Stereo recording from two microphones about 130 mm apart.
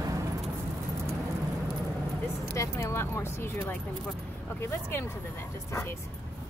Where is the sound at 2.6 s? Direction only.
20° left (ahead or behind).